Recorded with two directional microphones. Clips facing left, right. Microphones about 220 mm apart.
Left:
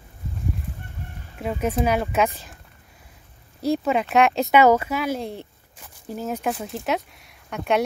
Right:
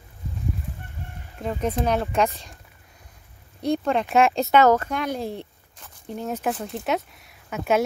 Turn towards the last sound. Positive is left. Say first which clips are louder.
# even
turn(degrees=-5)  # may be behind; listen again after turning